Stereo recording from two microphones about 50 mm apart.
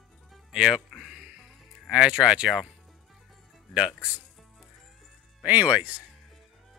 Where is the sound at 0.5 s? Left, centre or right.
Centre.